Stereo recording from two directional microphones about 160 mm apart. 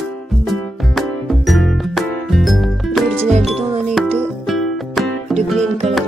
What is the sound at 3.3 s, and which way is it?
Music, 40° right (ahead or behind).